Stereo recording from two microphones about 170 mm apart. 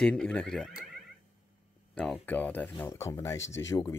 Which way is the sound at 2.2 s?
10° left (ahead or behind).